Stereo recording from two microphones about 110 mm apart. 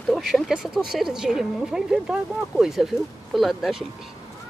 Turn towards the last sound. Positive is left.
turn(degrees=0)  # may be behind; listen again after turning